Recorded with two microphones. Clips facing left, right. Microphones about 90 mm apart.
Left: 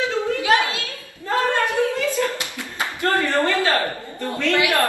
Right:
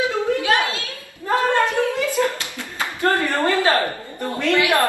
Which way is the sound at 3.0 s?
20° right (ahead or behind).